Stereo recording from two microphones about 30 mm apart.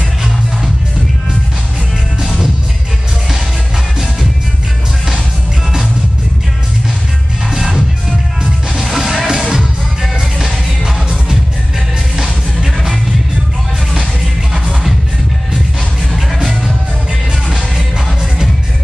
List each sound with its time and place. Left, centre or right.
7.5 s music: centre
8.9 s music: centre
14.5 s music: centre